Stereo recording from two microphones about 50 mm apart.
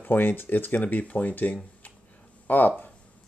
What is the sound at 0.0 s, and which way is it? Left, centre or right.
Speech, left.